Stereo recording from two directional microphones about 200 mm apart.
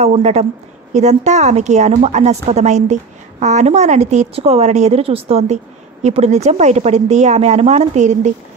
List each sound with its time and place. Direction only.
0.0 s a woman's voice: 30° right (ahead or behind)